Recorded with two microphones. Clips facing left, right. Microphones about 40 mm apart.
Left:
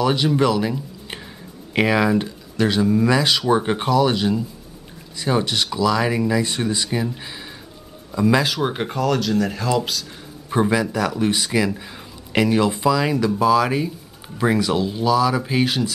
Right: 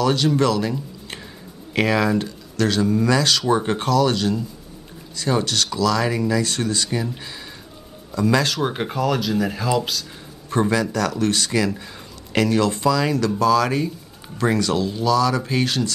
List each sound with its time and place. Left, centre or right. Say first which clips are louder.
0.0 s speech: even; centre
8.1 s speech: left 1 dB; centre
8.5 s speech: even; centre
10.5 s speech: left 1 dB; centre